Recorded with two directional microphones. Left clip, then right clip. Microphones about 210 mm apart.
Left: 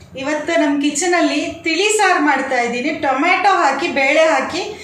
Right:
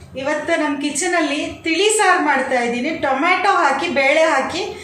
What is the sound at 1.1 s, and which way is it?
A woman's voice, centre (ahead or behind).